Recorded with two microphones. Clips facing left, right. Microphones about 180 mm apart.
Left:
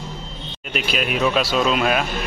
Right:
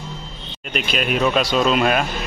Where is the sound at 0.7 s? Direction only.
5° left (ahead or behind).